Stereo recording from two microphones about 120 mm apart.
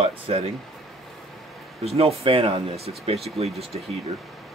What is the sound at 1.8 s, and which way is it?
Speech, 60° right (ahead or behind).